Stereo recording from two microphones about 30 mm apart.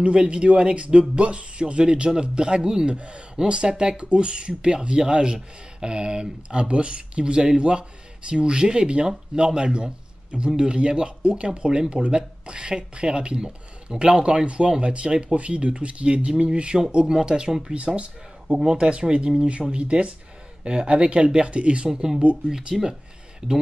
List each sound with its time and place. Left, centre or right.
0.0 s speech: right
2.9 s speech: right
15.3 s speech: right
17.9 s speech: right
22.5 s speech: right